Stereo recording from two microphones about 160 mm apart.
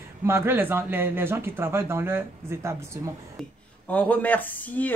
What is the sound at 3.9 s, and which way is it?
Speech, 10° left (ahead or behind).